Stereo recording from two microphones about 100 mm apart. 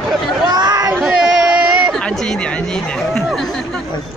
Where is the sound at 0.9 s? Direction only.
5° right (ahead or behind).